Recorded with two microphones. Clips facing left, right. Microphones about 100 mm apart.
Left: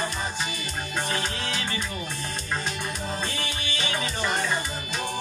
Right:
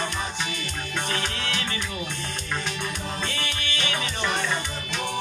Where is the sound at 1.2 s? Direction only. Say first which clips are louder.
Even; 60° right (ahead or behind).